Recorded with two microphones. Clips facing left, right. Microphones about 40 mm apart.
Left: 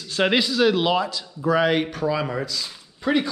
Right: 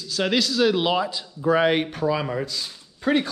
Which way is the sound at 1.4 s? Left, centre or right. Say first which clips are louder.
Even; right.